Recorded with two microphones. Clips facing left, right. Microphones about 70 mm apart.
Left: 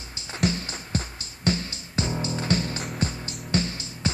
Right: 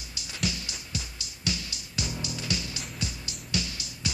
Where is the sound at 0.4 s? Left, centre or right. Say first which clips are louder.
Left 7 dB; left.